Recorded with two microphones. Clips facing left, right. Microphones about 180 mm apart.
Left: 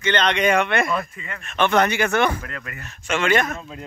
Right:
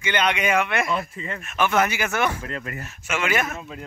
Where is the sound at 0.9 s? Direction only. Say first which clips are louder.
Even; 30° right (ahead or behind).